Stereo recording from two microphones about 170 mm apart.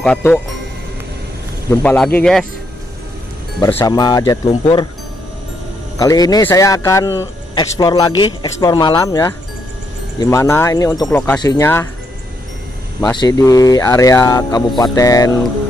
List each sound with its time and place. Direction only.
0.0 s speech: 5° left (ahead or behind)
1.7 s speech: 10° left (ahead or behind)
3.7 s speech: 20° left (ahead or behind)
5.9 s speech: 20° left (ahead or behind)
13.1 s speech: 20° left (ahead or behind)